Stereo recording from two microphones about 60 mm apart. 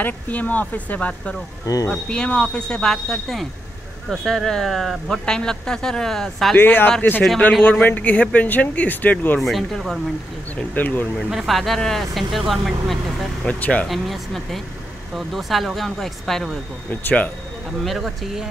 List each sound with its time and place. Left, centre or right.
0.0 s speech: left; by 6.5 s centre
6.5 s speech: left
9.4 s speech: centre
10.7 s speech: left
11.2 s speech: centre
13.4 s speech: centre
13.8 s speech: centre
17.8 s speech: centre